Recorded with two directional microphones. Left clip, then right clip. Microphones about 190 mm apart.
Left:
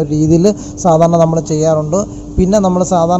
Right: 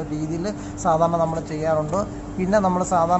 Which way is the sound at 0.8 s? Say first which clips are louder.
Left 10 dB; 10° left (ahead or behind).